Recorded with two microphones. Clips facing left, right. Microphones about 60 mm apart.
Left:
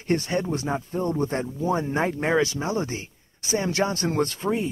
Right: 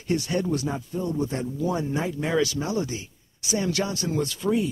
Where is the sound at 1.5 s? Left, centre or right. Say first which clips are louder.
Left 1 dB; left.